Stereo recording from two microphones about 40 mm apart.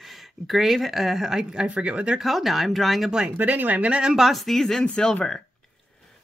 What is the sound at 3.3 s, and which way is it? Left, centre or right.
Speech, right.